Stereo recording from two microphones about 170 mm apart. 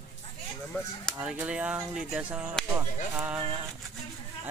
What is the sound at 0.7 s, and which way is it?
Speech, 5° left (ahead or behind).